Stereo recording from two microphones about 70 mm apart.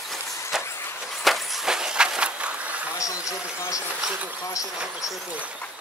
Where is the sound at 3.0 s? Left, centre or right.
Left.